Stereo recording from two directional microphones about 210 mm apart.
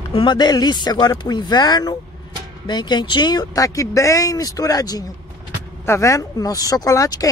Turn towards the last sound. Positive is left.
turn(degrees=15)  # may be behind; listen again after turning